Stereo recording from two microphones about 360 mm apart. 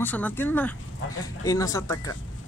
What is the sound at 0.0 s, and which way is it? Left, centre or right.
Speech, centre.